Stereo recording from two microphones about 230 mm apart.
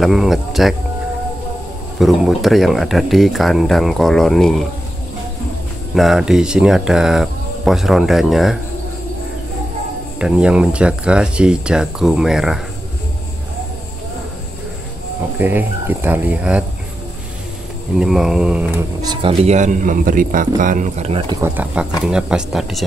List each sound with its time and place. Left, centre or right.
0.0 s speech: centre
2.0 s speech: centre
5.9 s speech: centre
10.1 s speech: centre
15.3 s speech: centre
17.9 s speech: centre
19.0 s speech: right
21.4 s speech: centre